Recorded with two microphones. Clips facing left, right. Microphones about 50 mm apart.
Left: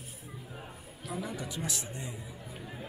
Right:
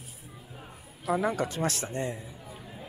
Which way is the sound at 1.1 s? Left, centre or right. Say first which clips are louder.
Right 10 dB; right.